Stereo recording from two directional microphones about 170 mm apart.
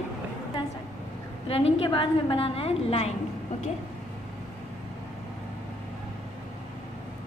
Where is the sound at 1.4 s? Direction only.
35° left (ahead or behind).